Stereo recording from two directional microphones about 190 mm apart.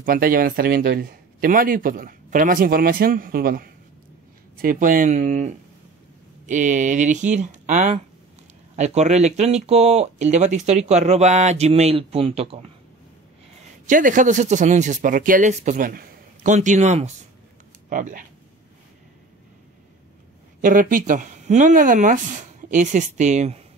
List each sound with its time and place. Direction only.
0.0 s speech: 50° right (ahead or behind); by 12.6 s 30° right (ahead or behind)
13.8 s speech: 45° right (ahead or behind)
20.6 s speech: 45° right (ahead or behind)